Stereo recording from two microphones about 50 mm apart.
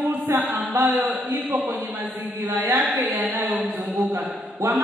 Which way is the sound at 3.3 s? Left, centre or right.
Right.